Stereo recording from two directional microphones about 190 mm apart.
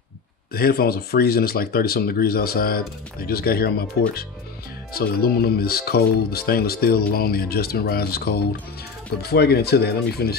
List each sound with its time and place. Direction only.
0.5 s speech: 55° left (ahead or behind)